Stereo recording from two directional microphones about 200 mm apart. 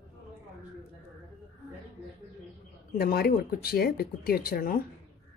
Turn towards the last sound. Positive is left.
turn(degrees=45)  # may be behind; listen again after turning